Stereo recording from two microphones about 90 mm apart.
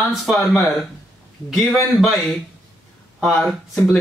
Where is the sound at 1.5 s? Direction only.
35° left (ahead or behind).